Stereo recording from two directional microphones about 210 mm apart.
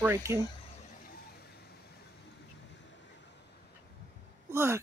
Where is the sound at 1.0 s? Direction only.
45° left (ahead or behind).